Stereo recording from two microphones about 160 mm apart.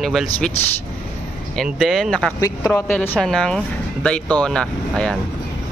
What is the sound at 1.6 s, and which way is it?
Speech, centre (ahead or behind).